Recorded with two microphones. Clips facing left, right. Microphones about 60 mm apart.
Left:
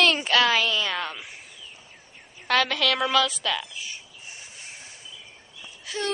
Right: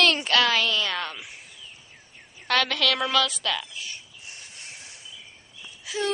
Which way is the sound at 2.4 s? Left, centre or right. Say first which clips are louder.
Left 1 dB; centre.